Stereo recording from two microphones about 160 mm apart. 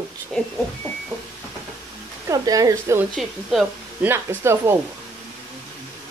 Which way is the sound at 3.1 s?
Centre (ahead or behind).